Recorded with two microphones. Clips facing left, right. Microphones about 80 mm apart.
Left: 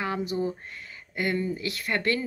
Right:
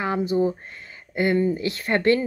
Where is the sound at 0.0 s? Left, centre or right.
Right.